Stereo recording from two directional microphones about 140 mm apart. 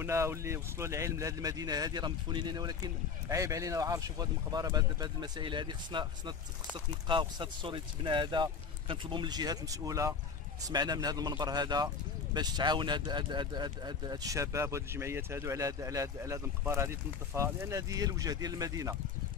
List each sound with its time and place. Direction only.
0.0 s speech: 20° right (ahead or behind)